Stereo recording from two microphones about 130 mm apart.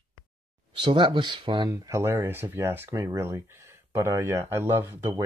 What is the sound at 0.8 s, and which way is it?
Speech, 40° right (ahead or behind).